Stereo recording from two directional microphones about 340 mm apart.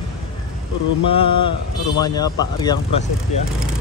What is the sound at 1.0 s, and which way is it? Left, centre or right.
Speech, centre.